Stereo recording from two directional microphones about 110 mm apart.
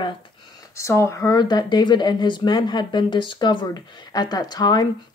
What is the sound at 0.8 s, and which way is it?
Speech, 25° left (ahead or behind).